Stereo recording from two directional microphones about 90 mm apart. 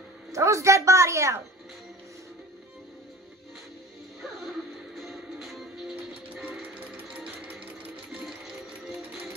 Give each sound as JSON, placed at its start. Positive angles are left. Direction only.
{"t": 0.3, "sound": "a woman's voice", "side_deg": -35}
{"t": 4.9, "sound": "music", "side_deg": 0}